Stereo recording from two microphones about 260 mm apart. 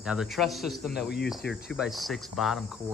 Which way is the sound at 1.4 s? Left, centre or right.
Left.